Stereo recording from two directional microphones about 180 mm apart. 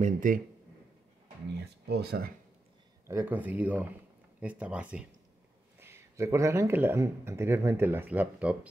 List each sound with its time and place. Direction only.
0.0 s speech: 50° right (ahead or behind)
1.5 s speech: 65° right (ahead or behind)
3.1 s speech: 10° right (ahead or behind)